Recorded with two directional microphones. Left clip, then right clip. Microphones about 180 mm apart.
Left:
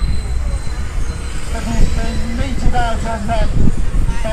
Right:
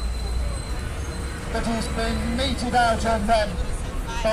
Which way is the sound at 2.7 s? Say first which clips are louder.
Even; 15° right (ahead or behind).